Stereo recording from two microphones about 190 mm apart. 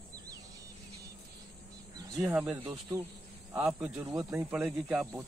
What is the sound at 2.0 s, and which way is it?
Speech, 15° right (ahead or behind).